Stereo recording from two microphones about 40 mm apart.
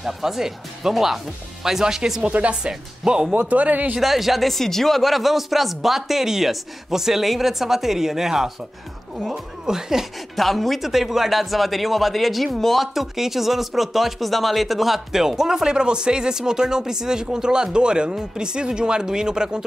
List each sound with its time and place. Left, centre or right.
0.0 s speech: centre
3.1 s speech: right
3.3 s a man's voice: right
4.0 s speech: centre
9.7 s speech: centre
10.3 s speech: centre